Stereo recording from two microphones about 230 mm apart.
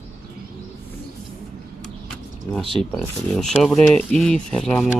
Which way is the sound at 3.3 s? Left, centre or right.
Centre.